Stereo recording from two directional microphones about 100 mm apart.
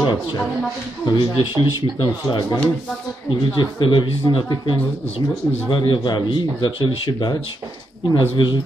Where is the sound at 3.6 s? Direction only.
50° left (ahead or behind).